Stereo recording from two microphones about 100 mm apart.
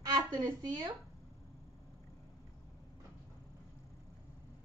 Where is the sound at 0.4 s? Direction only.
45° right (ahead or behind).